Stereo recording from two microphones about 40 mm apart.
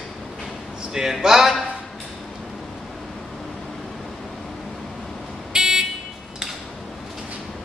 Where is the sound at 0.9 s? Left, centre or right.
Centre.